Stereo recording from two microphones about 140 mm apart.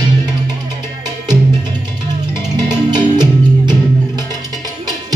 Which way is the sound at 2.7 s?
30° right (ahead or behind).